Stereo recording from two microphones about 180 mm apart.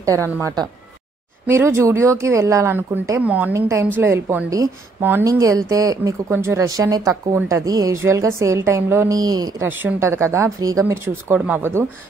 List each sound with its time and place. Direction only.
0.0 s speech: 15° right (ahead or behind)